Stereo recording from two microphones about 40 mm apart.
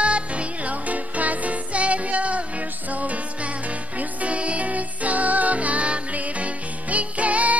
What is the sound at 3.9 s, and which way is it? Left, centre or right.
Music, right.